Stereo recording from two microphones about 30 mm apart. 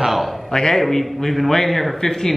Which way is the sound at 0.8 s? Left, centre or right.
Centre.